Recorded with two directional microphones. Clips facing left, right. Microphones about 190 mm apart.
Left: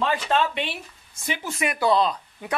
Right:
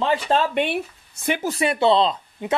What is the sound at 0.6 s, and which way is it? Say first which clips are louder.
Speech: right 8 dB; 55° right (ahead or behind).